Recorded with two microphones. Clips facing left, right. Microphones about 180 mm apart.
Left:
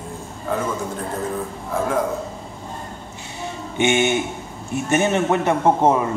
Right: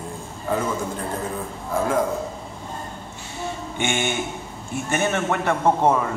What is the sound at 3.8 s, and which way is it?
A man's voice, 20° left (ahead or behind).